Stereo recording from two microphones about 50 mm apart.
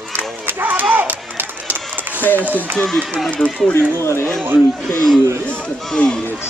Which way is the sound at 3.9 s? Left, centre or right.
Left.